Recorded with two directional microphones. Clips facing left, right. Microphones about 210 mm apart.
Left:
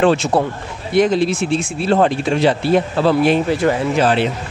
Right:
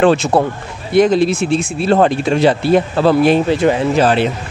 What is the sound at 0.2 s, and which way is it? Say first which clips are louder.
Speech: right 3 dB; 65° right (ahead or behind).